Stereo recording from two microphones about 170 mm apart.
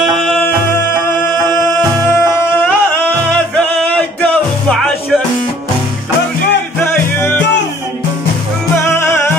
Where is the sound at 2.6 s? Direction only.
10° left (ahead or behind).